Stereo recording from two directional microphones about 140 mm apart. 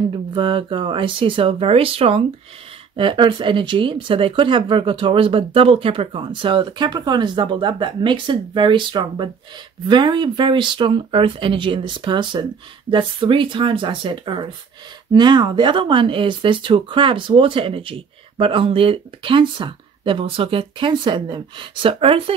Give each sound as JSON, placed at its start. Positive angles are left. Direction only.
{"t": 0.3, "sound": "speech", "side_deg": -35}